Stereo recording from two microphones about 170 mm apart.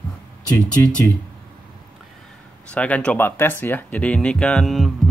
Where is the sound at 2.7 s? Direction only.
5° left (ahead or behind).